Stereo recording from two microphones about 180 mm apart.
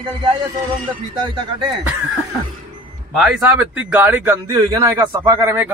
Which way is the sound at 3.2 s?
5° right (ahead or behind).